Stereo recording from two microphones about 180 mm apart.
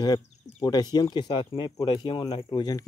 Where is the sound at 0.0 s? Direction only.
20° left (ahead or behind).